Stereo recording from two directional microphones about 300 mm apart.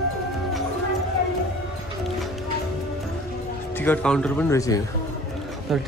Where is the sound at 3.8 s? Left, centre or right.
Centre.